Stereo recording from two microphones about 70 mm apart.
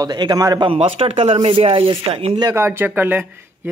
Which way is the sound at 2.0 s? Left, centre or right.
Right.